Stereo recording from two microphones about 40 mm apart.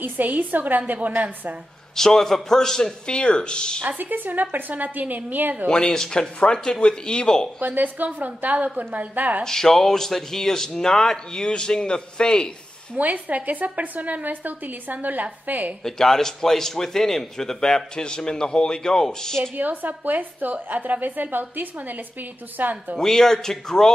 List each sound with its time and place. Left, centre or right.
0.0 s a woman's voice: right
2.0 s speech: centre
3.1 s speech: left
4.0 s speech: right
5.7 s speech: centre
7.6 s speech: right
9.4 s speech: centre
12.9 s speech: right
15.8 s speech: centre
19.5 s speech: right
23.0 s speech: centre